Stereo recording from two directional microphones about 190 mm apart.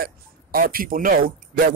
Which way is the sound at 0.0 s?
50° right (ahead or behind).